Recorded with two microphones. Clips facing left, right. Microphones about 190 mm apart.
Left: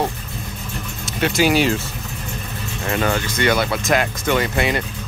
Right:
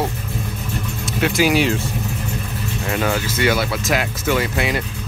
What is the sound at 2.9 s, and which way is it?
Speech, 5° right (ahead or behind).